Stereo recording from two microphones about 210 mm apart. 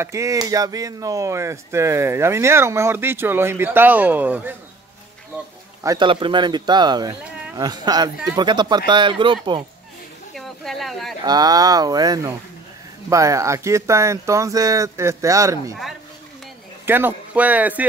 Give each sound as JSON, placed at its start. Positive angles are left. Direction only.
{"t": 0.0, "sound": "speech", "side_deg": -15}
{"t": 5.9, "sound": "speech", "side_deg": -20}
{"t": 10.3, "sound": "a sound", "side_deg": 0}
{"t": 11.2, "sound": "speech", "side_deg": -20}
{"t": 16.8, "sound": "speech", "side_deg": -10}